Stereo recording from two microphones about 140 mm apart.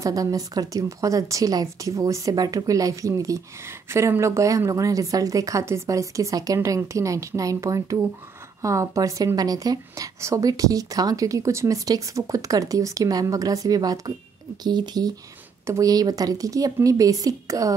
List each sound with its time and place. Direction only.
0.0 s speech: 25° right (ahead or behind)